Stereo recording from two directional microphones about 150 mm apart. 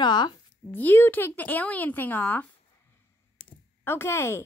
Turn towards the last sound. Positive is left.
turn(degrees=15)  # may be behind; listen again after turning